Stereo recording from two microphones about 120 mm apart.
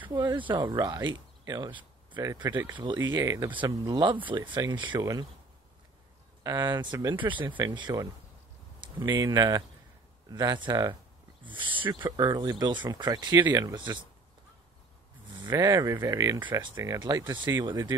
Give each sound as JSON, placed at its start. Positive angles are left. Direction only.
{"t": 0.1, "sound": "speech", "side_deg": -40}
{"t": 2.5, "sound": "speech", "side_deg": -15}
{"t": 6.4, "sound": "speech", "side_deg": -30}
{"t": 15.3, "sound": "a sound", "side_deg": -40}
{"t": 15.6, "sound": "speech", "side_deg": -25}
{"t": 17.0, "sound": "speech", "side_deg": -40}
{"t": 17.3, "sound": "speech", "side_deg": -20}
{"t": 17.6, "sound": "speech", "side_deg": -35}